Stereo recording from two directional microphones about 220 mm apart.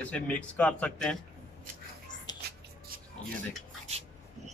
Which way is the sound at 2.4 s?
45° right (ahead or behind).